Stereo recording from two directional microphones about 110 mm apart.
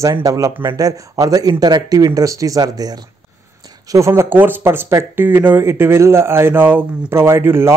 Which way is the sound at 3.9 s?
25° right (ahead or behind).